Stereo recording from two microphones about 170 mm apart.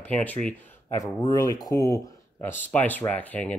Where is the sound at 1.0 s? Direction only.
20° left (ahead or behind).